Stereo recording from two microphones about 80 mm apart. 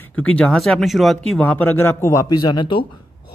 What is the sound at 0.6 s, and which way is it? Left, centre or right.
Speech, centre.